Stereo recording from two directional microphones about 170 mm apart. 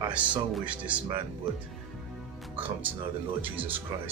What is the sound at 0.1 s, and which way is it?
Speech, 10° right (ahead or behind).